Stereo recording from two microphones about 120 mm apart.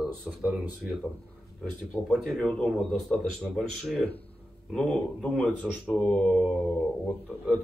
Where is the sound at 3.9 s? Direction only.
10° left (ahead or behind).